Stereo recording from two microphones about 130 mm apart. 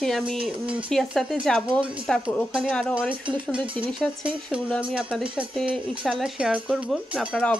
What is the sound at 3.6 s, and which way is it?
Speech, 40° right (ahead or behind).